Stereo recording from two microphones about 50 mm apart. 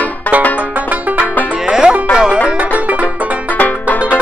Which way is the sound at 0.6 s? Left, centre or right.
Right.